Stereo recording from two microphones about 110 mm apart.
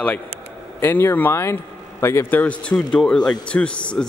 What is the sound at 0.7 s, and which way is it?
Speech, 20° left (ahead or behind).